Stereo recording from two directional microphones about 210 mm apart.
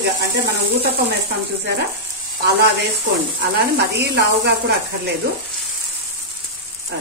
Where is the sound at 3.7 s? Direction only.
50° right (ahead or behind).